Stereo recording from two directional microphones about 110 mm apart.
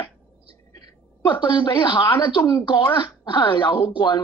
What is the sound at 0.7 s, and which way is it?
A woman's voice, 45° left (ahead or behind).